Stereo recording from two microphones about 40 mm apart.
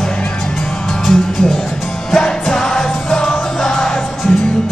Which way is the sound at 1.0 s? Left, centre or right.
Centre.